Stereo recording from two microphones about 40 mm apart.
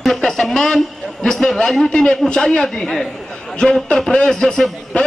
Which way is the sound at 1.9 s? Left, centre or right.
Left.